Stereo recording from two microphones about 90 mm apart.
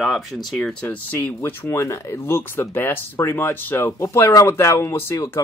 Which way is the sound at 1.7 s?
30° left (ahead or behind).